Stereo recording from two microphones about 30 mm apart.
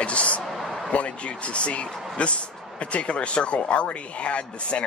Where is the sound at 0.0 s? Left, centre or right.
Left.